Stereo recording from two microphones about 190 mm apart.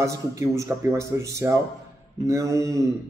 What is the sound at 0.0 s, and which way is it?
A man's voice, 15° right (ahead or behind).